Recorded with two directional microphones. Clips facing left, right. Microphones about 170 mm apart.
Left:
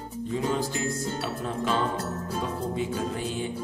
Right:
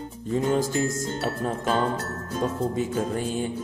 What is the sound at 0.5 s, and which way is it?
Speech, 45° right (ahead or behind).